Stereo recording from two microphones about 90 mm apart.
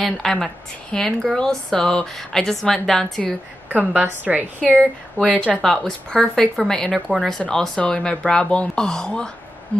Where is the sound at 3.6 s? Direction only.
20° right (ahead or behind).